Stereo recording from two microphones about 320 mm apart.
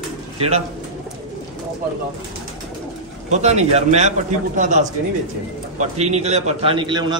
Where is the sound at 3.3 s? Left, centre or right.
Right.